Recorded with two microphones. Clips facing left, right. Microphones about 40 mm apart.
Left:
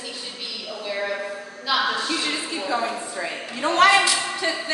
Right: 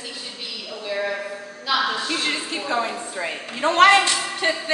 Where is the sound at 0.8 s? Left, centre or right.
Centre.